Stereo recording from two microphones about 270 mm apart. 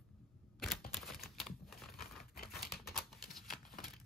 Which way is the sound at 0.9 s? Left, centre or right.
Centre.